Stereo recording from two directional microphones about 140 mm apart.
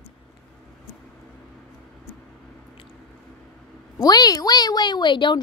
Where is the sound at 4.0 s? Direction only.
30° left (ahead or behind).